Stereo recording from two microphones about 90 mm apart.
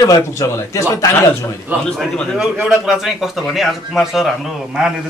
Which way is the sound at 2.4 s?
5° right (ahead or behind).